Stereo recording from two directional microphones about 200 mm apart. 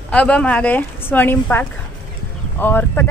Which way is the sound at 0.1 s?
5° left (ahead or behind).